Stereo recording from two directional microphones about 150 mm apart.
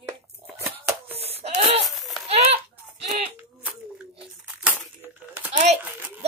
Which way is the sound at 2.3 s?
45° right (ahead or behind).